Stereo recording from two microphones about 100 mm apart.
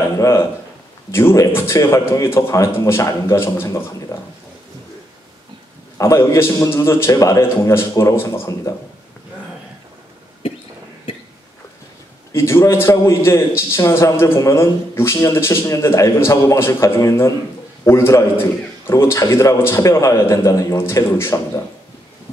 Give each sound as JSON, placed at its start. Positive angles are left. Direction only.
{"t": 0.2, "sound": "a man's voice", "side_deg": 30}
{"t": 5.9, "sound": "a man's voice", "side_deg": 30}
{"t": 12.3, "sound": "a man's voice", "side_deg": 25}